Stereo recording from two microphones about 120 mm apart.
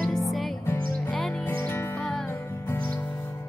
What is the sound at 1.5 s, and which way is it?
Music, 20° left (ahead or behind).